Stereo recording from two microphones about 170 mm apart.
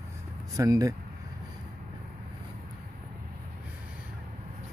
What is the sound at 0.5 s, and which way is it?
Speech, 20° right (ahead or behind).